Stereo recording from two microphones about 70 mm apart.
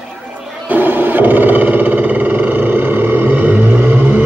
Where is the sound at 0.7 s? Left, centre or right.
Right.